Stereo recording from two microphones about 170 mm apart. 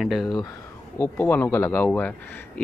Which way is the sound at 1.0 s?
10° left (ahead or behind).